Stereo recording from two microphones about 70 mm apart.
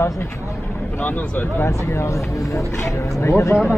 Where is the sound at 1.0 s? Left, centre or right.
Left.